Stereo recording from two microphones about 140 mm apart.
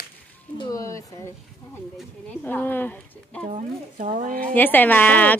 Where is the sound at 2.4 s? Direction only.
15° left (ahead or behind).